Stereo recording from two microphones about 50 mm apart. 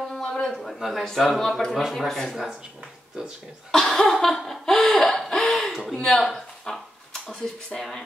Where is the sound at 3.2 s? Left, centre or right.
Centre.